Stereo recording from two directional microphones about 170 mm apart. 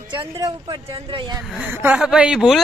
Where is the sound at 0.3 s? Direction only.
20° right (ahead or behind).